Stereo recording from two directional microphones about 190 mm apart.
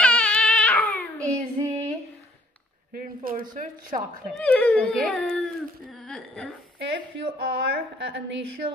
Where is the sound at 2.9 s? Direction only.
50° right (ahead or behind).